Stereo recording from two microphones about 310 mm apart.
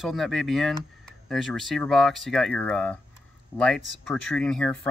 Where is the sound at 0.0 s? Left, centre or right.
Centre.